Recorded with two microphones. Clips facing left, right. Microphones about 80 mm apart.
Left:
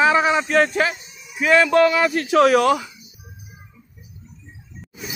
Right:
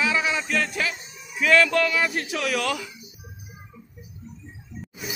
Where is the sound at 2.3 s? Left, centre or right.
Left.